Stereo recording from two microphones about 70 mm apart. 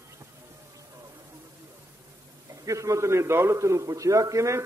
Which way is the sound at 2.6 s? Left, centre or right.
Right.